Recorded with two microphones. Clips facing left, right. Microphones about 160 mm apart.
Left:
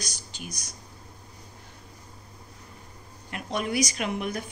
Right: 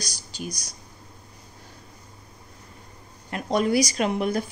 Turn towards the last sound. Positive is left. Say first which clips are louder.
# right 6 dB
turn(degrees=-35)  # may be behind; listen again after turning